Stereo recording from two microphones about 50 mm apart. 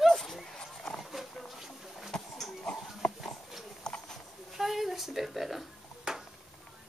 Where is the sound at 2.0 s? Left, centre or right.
Centre.